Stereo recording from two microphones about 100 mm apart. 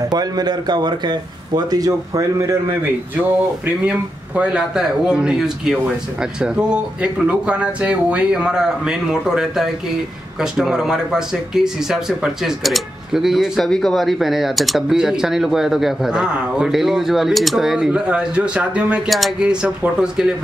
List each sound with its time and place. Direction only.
0.1 s a man's voice: 40° right (ahead or behind)
4.4 s speech: 10° right (ahead or behind)
19.0 s speech: centre (ahead or behind)